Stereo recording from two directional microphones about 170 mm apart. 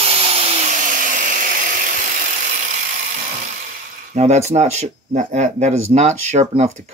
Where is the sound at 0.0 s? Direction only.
35° right (ahead or behind).